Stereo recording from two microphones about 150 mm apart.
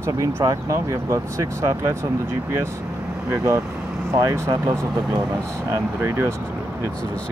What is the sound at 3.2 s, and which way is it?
Speech, 20° right (ahead or behind).